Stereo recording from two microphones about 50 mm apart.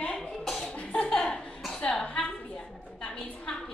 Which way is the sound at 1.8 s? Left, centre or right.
Left.